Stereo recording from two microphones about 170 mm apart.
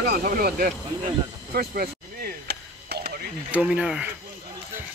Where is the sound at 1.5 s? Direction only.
65° right (ahead or behind).